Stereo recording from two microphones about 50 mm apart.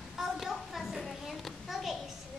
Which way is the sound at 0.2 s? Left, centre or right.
Centre.